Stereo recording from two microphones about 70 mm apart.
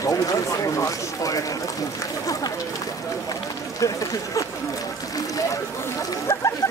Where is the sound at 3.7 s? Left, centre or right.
Left.